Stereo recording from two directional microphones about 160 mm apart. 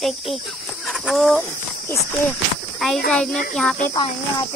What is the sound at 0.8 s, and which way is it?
Chicken, centre (ahead or behind).